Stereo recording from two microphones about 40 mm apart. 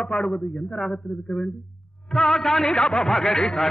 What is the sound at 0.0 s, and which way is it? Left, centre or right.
A man's voice, centre.